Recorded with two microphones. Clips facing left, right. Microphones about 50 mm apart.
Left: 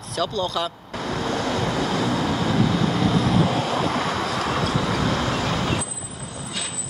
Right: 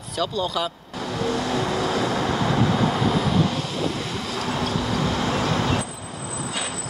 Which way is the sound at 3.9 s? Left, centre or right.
Left.